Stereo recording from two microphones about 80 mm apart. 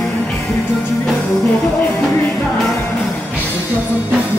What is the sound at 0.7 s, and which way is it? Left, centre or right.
Music, left.